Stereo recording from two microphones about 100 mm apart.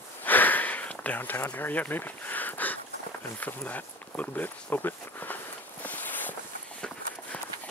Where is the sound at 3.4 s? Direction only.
15° left (ahead or behind).